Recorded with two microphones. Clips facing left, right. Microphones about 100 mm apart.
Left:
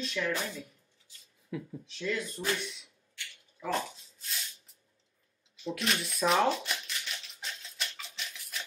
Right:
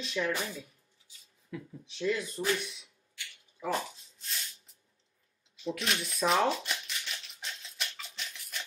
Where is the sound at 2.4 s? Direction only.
15° right (ahead or behind).